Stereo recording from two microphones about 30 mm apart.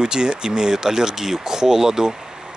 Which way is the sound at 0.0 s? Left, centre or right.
Right.